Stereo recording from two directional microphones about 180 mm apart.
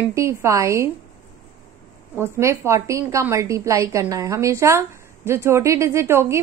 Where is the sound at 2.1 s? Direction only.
15° right (ahead or behind).